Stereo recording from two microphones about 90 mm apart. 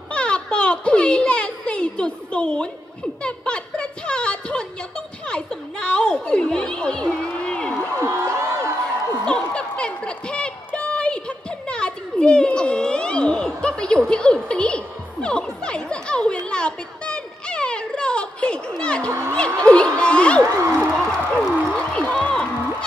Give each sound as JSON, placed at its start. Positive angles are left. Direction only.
{"t": 0.1, "sound": "a child's voice", "side_deg": 10}
{"t": 8.0, "sound": "speech", "side_deg": -35}
{"t": 8.4, "sound": "a sound", "side_deg": -30}
{"t": 9.2, "sound": "a sound", "side_deg": 10}
{"t": 15.2, "sound": "speech", "side_deg": 10}
{"t": 16.4, "sound": "music", "side_deg": 10}
{"t": 19.3, "sound": "speech", "side_deg": 10}
{"t": 20.9, "sound": "music", "side_deg": 0}